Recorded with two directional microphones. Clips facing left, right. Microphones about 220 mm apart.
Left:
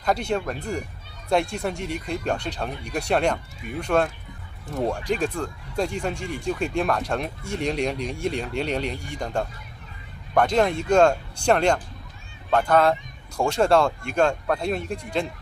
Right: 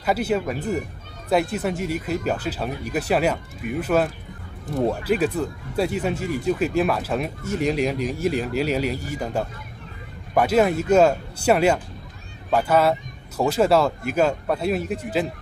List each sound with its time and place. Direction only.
0.0 s speech: 5° right (ahead or behind)